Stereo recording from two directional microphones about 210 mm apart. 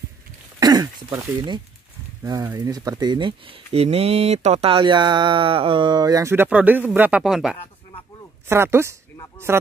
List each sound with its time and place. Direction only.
0.6 s speech: 20° right (ahead or behind); by 7.5 s centre (ahead or behind)
8.5 s speech: 10° right (ahead or behind)